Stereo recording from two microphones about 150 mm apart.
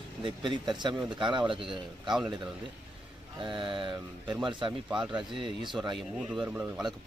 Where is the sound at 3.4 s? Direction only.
35° right (ahead or behind).